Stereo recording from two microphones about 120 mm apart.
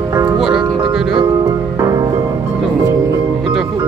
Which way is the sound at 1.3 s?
30° right (ahead or behind).